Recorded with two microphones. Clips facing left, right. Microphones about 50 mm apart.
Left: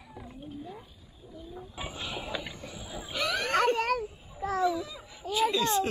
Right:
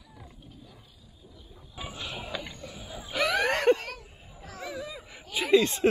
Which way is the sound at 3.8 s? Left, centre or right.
Left.